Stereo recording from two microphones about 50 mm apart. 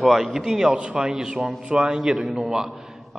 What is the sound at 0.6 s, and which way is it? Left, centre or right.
A man's voice, right.